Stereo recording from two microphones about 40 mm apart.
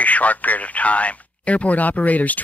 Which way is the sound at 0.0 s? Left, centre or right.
Left.